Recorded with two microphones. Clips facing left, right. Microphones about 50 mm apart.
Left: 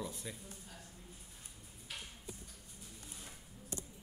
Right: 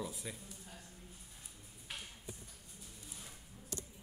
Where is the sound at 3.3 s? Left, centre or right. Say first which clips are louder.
Left 1 dB; left.